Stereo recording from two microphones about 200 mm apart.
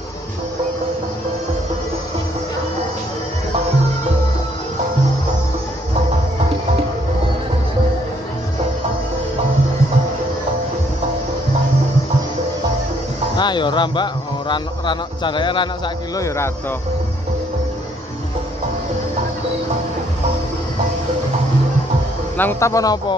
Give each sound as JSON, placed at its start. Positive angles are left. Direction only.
{"t": 13.4, "sound": "speech", "side_deg": 20}
{"t": 22.4, "sound": "a man's voice", "side_deg": 10}